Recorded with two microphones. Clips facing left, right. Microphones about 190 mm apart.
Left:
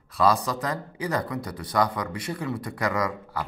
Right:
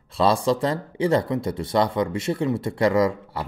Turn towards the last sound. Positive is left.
turn(degrees=-25)  # may be behind; listen again after turning